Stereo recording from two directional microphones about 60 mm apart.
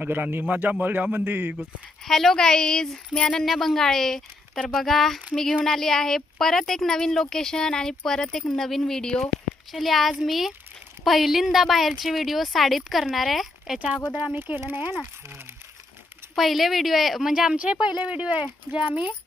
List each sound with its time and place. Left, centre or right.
0.0 s speech: right
2.0 s a woman's voice: centre
14.4 s speech: right
16.3 s speech: centre
17.6 s speech: centre